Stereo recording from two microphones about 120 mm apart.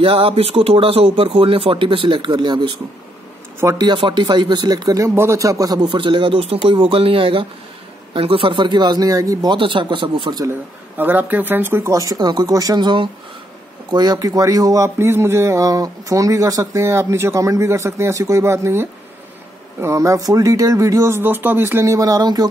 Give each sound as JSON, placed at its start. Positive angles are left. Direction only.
{"t": 0.0, "sound": "speech", "side_deg": -50}
{"t": 9.5, "sound": "speech", "side_deg": -45}
{"t": 11.0, "sound": "speech", "side_deg": -15}